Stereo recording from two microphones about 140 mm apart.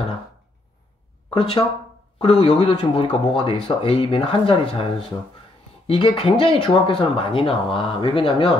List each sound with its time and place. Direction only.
1.3 s speech: 40° left (ahead or behind)